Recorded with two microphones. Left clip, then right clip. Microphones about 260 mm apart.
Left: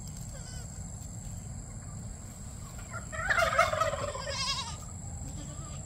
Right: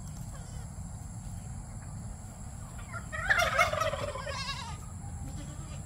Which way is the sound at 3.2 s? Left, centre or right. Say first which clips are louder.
Even; centre.